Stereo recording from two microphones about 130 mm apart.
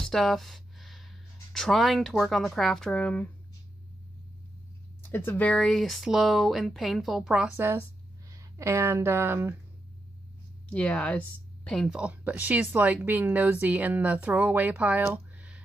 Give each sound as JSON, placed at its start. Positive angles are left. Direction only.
{"t": 0.0, "sound": "speech", "side_deg": 0}
{"t": 5.1, "sound": "speech", "side_deg": 15}
{"t": 7.5, "sound": "a woman's voice", "side_deg": -20}
{"t": 10.7, "sound": "speech", "side_deg": 10}
{"t": 11.9, "sound": "speech", "side_deg": -10}